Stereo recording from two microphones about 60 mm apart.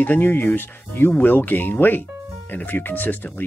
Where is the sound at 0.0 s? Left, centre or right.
Left.